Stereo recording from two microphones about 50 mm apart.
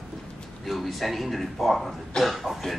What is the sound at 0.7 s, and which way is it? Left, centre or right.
Speech, centre.